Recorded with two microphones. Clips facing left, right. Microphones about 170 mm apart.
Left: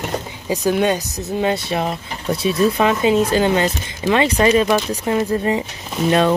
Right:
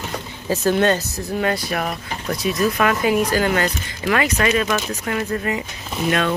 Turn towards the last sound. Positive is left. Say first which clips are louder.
# left 5 dB
turn(degrees=30)  # may be behind; listen again after turning